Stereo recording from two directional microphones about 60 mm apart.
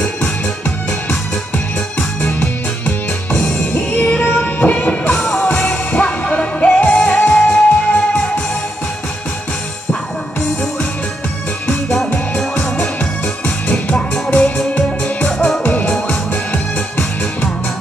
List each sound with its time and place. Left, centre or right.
2.8 s music: left
11.6 s music: centre
13.7 s music: centre
15.6 s music: left